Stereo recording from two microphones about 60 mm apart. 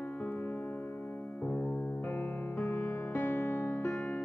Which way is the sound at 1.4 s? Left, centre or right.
Left.